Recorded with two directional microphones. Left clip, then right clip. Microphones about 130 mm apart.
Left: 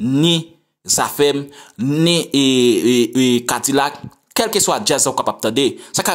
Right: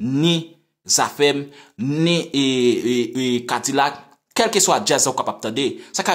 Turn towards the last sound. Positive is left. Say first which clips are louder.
# left 5 dB
turn(degrees=35)  # may be behind; listen again after turning